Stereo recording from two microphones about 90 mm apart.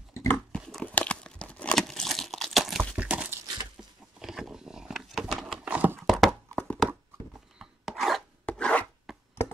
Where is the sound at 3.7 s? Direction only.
5° right (ahead or behind).